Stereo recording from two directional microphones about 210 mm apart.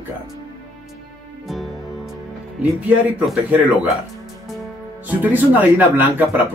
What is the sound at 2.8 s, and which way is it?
Speech, 5° right (ahead or behind).